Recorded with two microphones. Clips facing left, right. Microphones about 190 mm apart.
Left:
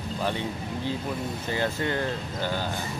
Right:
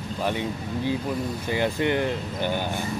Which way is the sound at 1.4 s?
15° right (ahead or behind).